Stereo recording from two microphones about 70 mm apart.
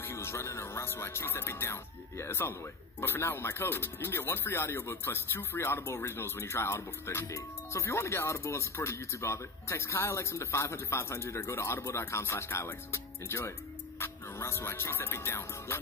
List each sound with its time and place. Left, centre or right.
0.0 s speech: left